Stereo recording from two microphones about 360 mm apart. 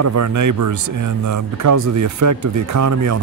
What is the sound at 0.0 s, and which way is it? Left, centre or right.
Speech, right.